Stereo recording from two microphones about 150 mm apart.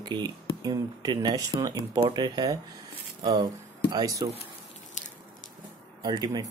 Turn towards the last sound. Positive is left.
turn(degrees=-30)  # may be behind; listen again after turning